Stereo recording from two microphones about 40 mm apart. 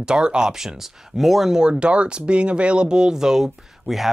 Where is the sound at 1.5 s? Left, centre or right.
Right.